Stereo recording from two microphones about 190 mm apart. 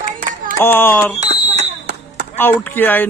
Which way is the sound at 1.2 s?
35° right (ahead or behind).